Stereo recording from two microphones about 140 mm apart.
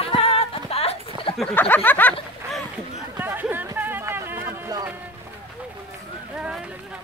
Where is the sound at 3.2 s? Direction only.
15° right (ahead or behind).